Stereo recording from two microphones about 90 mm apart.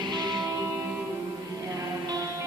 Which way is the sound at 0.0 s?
55° right (ahead or behind).